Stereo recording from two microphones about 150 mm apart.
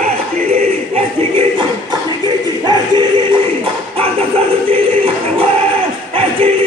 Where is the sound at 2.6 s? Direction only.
30° right (ahead or behind).